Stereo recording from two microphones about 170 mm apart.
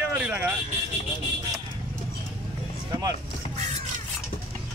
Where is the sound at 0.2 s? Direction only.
10° right (ahead or behind).